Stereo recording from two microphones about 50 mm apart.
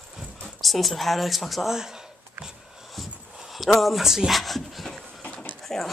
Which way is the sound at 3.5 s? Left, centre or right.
Centre.